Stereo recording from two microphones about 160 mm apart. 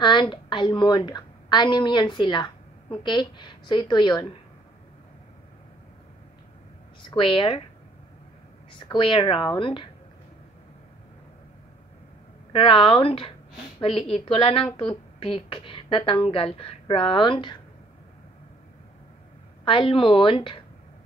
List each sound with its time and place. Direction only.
0.0 s a woman's voice: 30° left (ahead or behind)
7.1 s a woman's voice: 30° left (ahead or behind)
8.9 s a woman's voice: 30° left (ahead or behind)
12.5 s a woman's voice: 35° left (ahead or behind)
19.6 s a woman's voice: 35° left (ahead or behind)